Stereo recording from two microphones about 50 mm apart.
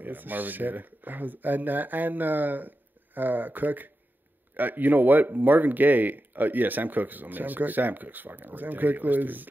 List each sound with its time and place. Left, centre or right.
0.0 s speech: right